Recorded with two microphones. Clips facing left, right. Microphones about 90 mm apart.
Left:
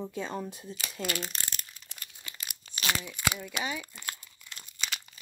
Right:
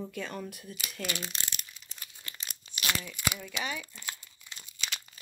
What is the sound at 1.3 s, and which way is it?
Crumpling, 40° left (ahead or behind).